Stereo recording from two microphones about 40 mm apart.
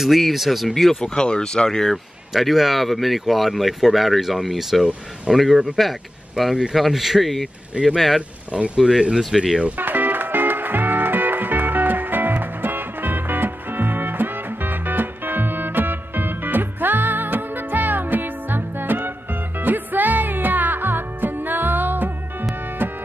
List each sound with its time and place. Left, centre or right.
0.0 s speech: centre
1.0 s speech: left
2.3 s speech: centre
8.7 s speech: centre
9.3 s speech: centre
9.8 s music: right
19.6 s music: right